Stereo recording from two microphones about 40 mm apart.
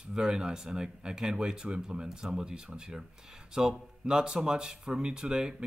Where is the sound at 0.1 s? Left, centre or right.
Centre.